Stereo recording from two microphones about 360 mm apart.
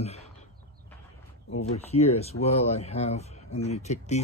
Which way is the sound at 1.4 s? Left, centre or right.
Centre.